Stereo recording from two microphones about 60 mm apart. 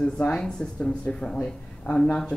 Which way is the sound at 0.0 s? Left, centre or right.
Centre.